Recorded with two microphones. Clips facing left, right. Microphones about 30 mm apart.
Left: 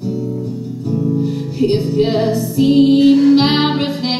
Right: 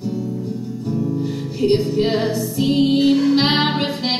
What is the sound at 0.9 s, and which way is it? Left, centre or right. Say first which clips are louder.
Music: left 4 dB; centre.